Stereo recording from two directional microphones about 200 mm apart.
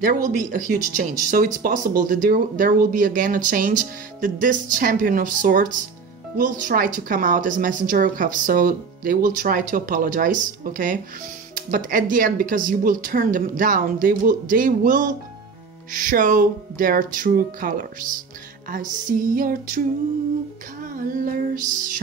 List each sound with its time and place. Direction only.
0.0 s speech: 45° right (ahead or behind)
21.1 s speech: 45° right (ahead or behind)